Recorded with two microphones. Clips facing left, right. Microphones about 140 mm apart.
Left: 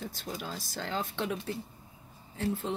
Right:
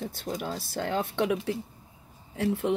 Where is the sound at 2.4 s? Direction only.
70° right (ahead or behind).